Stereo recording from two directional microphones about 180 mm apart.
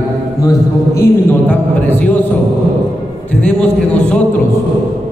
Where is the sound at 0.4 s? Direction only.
20° left (ahead or behind).